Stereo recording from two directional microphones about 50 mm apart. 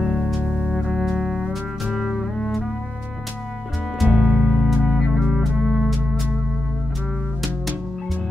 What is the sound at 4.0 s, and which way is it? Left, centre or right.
Music, centre.